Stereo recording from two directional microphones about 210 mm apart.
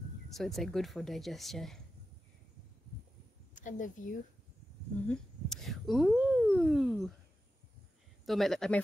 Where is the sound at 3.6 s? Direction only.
35° left (ahead or behind).